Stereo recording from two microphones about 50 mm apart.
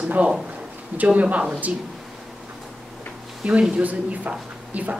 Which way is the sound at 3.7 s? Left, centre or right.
Right.